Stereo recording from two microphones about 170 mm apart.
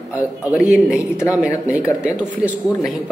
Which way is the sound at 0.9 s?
15° left (ahead or behind).